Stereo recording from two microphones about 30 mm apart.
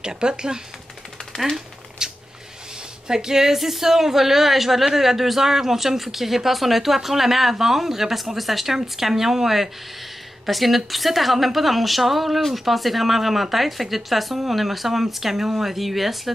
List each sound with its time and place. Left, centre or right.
0.0 s speech: right
2.0 s a sound: centre
3.1 s speech: centre